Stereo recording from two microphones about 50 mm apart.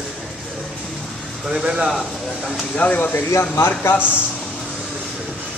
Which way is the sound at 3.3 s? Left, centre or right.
Left.